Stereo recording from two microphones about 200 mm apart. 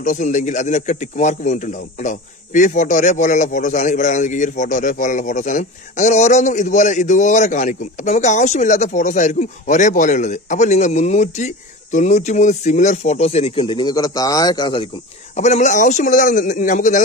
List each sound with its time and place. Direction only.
0.0 s speech: 40° left (ahead or behind)
15.3 s speech: 35° left (ahead or behind)